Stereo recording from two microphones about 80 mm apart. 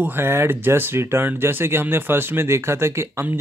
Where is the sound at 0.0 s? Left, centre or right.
Right.